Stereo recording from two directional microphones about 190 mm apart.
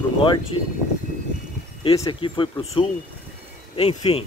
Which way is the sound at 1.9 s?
25° left (ahead or behind).